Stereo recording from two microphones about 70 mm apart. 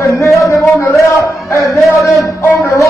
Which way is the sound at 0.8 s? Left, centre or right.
Left.